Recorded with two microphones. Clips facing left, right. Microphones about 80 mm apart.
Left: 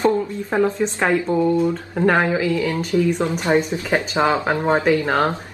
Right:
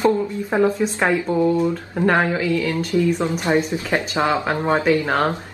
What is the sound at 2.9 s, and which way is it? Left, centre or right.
Speech, left.